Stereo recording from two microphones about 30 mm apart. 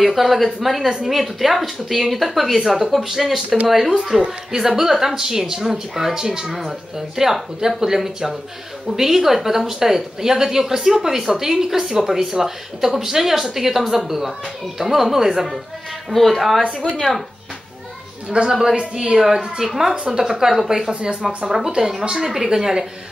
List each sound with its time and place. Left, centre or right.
0.0 s a woman's voice: centre
0.8 s speech: right
1.1 s a woman's voice: centre
4.5 s speech: centre
16.1 s a woman's voice: centre
18.5 s speech: centre
20.9 s speech: right
22.1 s speech: centre